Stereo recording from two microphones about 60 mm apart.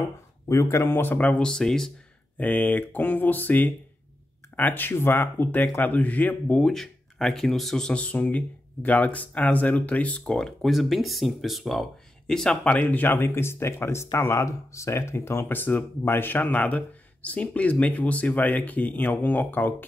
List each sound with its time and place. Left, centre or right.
0.5 s speech: left
0.8 s speech: left
1.4 s speech: centre
2.3 s speech: left
6.7 s speech: centre
8.0 s speech: left
10.3 s speech: centre
12.6 s speech: left